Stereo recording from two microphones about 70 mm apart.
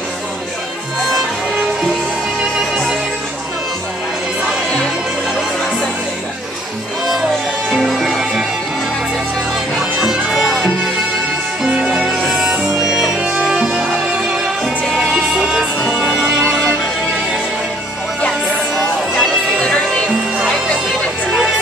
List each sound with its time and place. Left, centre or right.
7.7 s music: centre
9.9 s music: centre
14.2 s music: centre
19.1 s music: centre